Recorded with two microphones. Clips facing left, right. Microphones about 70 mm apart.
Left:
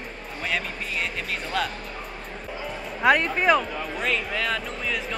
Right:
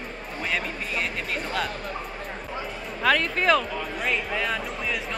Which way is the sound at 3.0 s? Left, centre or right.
Centre.